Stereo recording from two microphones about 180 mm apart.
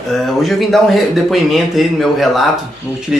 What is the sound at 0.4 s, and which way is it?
A man's voice, centre (ahead or behind).